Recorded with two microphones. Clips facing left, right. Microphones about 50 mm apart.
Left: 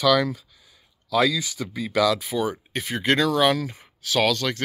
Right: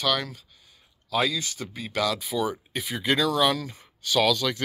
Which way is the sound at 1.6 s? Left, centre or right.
Left.